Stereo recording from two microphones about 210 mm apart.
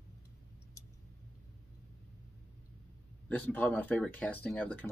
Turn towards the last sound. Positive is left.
turn(degrees=5)  # may be behind; listen again after turning